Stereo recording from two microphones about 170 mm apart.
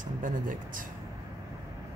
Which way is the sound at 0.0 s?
50° right (ahead or behind).